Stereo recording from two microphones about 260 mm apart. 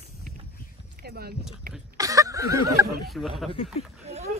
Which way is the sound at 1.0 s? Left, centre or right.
Right.